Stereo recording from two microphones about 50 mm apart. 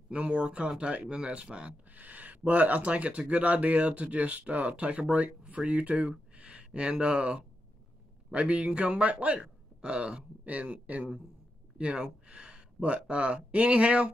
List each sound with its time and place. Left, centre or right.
0.1 s speech: right
1.9 s speech: right
9.4 s a sound: centre
10.4 s speech: right